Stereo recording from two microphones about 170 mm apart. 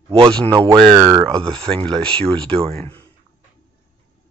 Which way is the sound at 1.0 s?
15° right (ahead or behind).